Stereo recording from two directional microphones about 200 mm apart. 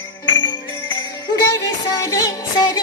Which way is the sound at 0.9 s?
25° left (ahead or behind).